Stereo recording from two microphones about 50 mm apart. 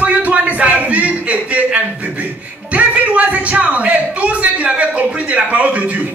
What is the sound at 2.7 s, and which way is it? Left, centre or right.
A man's voice, right.